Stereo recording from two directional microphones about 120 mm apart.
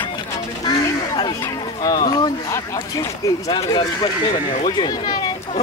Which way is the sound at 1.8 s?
35° left (ahead or behind).